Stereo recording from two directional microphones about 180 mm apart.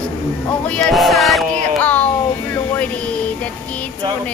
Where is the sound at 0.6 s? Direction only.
5° left (ahead or behind).